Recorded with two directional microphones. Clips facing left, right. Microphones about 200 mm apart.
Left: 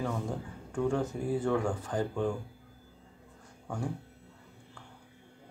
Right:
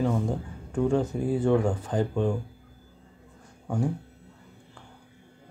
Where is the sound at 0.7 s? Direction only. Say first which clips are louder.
Right 5 dB; 25° right (ahead or behind).